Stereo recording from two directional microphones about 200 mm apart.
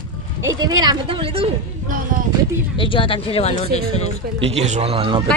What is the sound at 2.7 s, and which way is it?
Speech, 25° left (ahead or behind).